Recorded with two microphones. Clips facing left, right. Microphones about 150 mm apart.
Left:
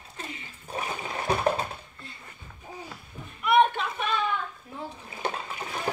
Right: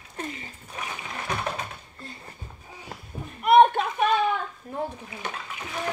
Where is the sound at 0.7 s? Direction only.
30° left (ahead or behind).